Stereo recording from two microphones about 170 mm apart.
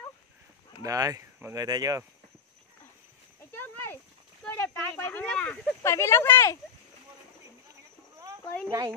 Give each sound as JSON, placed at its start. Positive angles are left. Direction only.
{"t": 0.8, "sound": "speech", "side_deg": -20}
{"t": 3.5, "sound": "a sound", "side_deg": 10}
{"t": 4.6, "sound": "speech", "side_deg": 10}
{"t": 8.6, "sound": "speech", "side_deg": -20}